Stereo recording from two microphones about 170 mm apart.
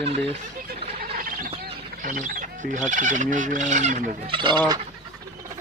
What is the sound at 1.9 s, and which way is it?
Speech, 50° right (ahead or behind).